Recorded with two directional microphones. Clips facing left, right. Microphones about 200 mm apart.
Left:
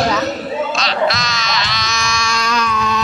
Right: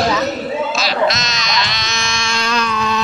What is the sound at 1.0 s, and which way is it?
Music, 20° right (ahead or behind).